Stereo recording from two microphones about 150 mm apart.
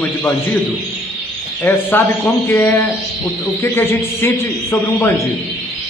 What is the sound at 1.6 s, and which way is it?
A man's voice, 15° left (ahead or behind).